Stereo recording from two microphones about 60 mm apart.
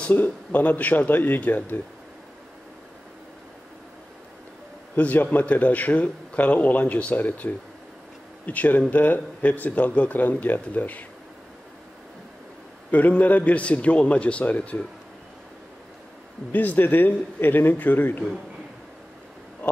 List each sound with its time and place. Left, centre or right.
0.1 s speech: left
4.9 s speech: left
12.9 s speech: left
16.5 s speech: left